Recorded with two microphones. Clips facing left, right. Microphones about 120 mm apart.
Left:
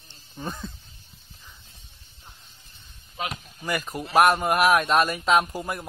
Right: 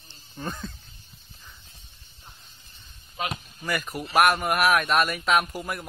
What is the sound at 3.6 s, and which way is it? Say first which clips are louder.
Speech: left 1 dB; 30° left (ahead or behind).